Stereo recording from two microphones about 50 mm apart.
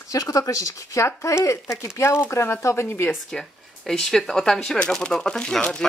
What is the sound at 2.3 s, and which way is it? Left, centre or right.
Speech, left.